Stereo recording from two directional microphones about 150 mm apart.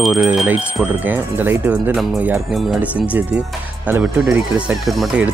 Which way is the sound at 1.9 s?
Centre (ahead or behind).